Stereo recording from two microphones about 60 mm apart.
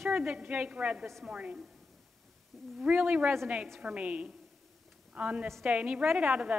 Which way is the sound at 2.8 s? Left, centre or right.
Right.